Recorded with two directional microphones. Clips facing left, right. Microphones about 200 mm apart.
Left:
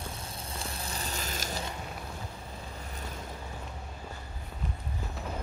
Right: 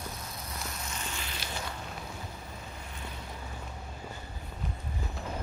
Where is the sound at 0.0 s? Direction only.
30° left (ahead or behind).